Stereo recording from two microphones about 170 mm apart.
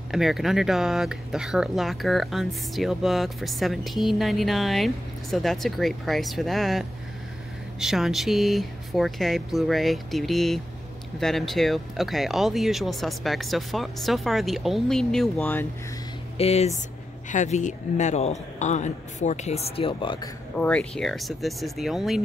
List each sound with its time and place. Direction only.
0.1 s speech: centre (ahead or behind)
16.3 s a man's voice: 40° left (ahead or behind)
20.5 s speech: 5° left (ahead or behind)